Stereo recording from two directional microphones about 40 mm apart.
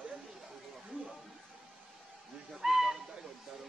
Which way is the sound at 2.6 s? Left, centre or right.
Centre.